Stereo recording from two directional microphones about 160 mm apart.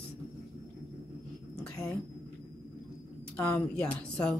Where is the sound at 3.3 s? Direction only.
10° left (ahead or behind).